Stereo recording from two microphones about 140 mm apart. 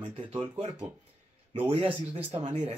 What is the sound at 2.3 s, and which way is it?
Speech, 40° right (ahead or behind).